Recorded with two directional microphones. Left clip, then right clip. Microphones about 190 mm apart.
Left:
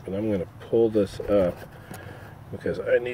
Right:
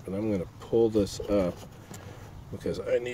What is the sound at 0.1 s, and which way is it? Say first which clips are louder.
Speech: left 4 dB; 10° right (ahead or behind).